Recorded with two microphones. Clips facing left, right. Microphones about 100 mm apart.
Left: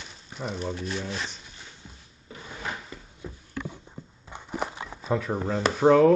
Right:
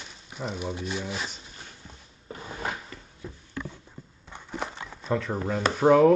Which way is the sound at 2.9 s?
15° left (ahead or behind).